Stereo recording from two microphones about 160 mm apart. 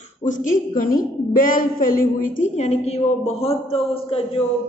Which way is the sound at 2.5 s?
45° left (ahead or behind).